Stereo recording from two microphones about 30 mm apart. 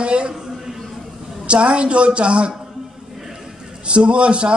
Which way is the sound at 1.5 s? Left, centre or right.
Right.